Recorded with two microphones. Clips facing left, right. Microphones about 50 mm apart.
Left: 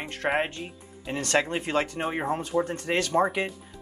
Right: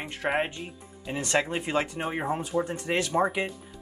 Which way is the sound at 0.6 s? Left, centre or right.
Centre.